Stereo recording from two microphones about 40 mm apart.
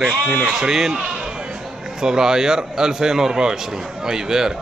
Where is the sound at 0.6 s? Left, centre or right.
Centre.